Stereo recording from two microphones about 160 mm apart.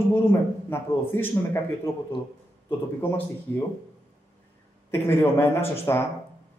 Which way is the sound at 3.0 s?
10° left (ahead or behind).